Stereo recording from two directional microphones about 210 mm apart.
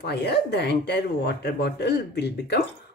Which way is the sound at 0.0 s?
50° left (ahead or behind).